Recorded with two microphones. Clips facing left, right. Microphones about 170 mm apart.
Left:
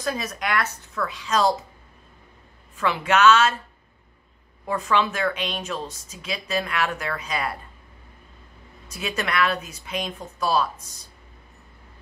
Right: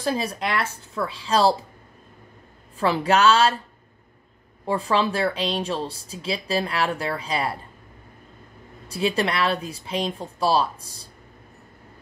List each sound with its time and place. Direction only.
0.0 s a woman's voice: 30° right (ahead or behind)
2.8 s speech: 35° right (ahead or behind)
4.6 s speech: 30° right (ahead or behind)
8.8 s speech: 30° right (ahead or behind)